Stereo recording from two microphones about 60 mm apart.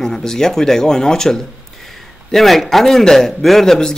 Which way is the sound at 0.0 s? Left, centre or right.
Centre.